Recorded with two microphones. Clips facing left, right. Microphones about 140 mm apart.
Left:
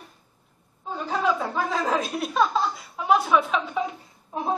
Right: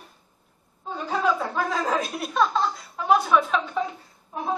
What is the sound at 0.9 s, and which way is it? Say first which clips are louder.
Speech: even; centre (ahead or behind).